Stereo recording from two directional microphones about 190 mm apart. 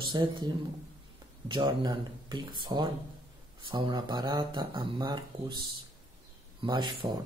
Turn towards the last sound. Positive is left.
turn(degrees=-25)  # may be behind; listen again after turning